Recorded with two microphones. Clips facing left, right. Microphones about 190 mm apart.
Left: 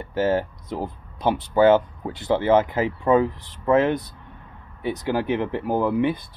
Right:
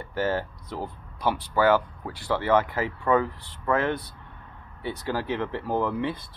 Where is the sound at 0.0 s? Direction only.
20° left (ahead or behind).